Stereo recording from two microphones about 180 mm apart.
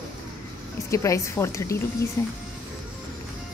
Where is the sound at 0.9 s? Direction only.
15° left (ahead or behind).